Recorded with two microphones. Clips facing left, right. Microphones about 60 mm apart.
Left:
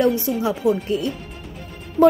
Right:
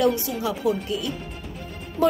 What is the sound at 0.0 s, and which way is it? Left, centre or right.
A woman's voice, left.